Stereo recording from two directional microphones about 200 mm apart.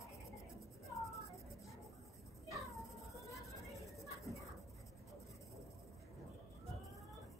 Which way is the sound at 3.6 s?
Centre (ahead or behind).